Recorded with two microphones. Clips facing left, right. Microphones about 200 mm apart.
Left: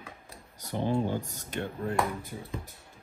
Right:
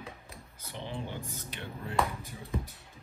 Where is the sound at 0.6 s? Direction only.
45° left (ahead or behind).